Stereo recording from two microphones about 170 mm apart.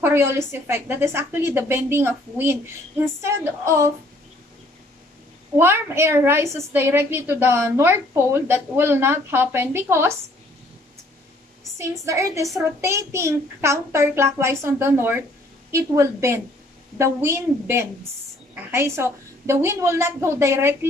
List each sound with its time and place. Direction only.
0.0 s a sound: 15° right (ahead or behind)
0.5 s a woman's voice: 15° right (ahead or behind)
5.6 s a woman's voice: 15° right (ahead or behind)
11.8 s a woman's voice: 15° right (ahead or behind)